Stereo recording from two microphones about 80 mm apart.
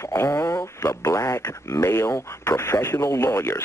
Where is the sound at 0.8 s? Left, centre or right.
Left.